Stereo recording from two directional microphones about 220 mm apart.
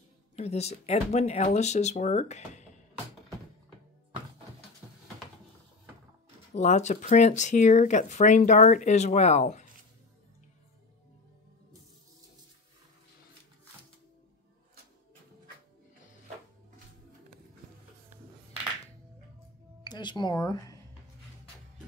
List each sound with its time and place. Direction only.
0.4 s speech: 30° left (ahead or behind)
6.5 s speech: 35° left (ahead or behind)
19.8 s music: 20° left (ahead or behind)